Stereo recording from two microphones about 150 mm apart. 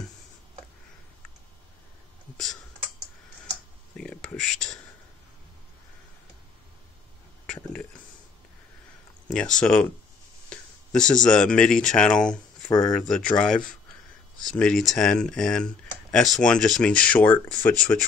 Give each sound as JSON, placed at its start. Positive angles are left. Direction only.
{"t": 2.3, "sound": "computer keyboard", "side_deg": 5}
{"t": 3.9, "sound": "a sound", "side_deg": 5}
{"t": 9.3, "sound": "speech", "side_deg": 5}
{"t": 12.6, "sound": "speech", "side_deg": 25}
{"t": 12.9, "sound": "speech", "side_deg": 5}